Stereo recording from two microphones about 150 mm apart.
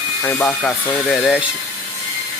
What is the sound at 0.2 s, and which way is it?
Speech, 10° left (ahead or behind).